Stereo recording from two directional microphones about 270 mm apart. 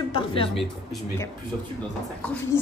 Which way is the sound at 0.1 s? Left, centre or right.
Centre.